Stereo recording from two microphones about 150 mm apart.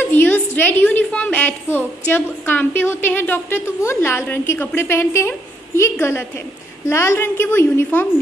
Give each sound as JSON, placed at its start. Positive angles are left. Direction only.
{"t": 0.1, "sound": "a woman's voice", "side_deg": 10}